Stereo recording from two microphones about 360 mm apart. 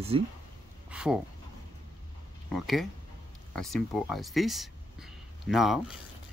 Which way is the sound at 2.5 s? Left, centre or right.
Centre.